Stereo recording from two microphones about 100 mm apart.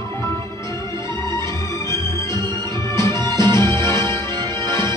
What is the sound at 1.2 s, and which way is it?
Music, 30° left (ahead or behind).